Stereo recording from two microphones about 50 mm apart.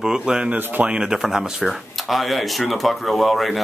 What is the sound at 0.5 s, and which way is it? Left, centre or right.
Speech, right.